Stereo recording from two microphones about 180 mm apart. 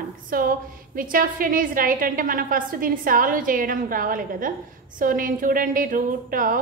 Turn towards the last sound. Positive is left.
turn(degrees=-50)  # may be behind; listen again after turning